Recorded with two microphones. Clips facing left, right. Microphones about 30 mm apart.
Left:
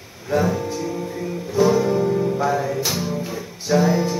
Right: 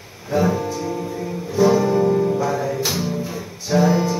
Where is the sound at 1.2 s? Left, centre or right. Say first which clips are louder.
Left 2 dB; centre.